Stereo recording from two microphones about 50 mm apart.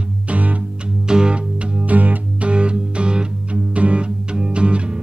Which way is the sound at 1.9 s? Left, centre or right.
Right.